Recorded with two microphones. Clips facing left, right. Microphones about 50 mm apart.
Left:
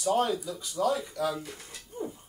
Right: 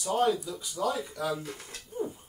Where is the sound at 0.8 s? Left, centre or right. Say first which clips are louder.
Left 3 dB; centre.